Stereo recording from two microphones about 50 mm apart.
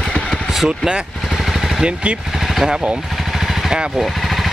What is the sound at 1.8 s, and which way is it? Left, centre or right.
Speech, right.